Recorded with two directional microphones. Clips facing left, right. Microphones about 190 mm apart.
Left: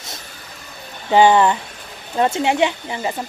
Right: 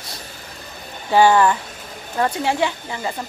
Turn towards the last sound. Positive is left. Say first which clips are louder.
# left 3 dB
turn(degrees=20)  # may be behind; listen again after turning